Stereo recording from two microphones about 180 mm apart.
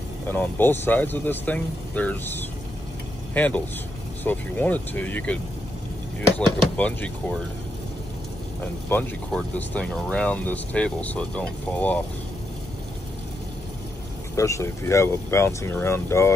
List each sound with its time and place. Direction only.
0.3 s speech: 10° left (ahead or behind)
8.8 s speech: 10° left (ahead or behind)
14.3 s speech: 15° left (ahead or behind)